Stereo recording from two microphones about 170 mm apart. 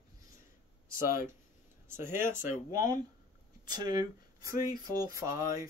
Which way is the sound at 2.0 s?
15° right (ahead or behind).